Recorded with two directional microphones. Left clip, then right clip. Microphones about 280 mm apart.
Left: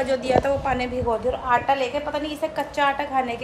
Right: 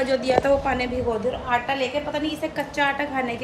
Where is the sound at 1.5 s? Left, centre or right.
Left.